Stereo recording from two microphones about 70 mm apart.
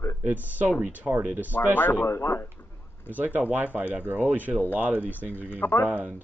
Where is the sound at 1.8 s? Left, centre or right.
Left.